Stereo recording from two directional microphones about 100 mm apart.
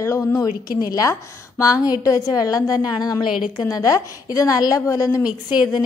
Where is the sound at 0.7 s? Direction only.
40° left (ahead or behind).